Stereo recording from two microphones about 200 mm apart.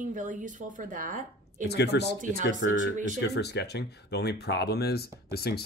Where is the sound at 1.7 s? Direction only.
55° left (ahead or behind).